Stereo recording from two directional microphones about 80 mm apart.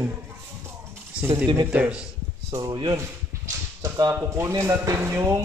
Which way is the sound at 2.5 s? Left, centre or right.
Right.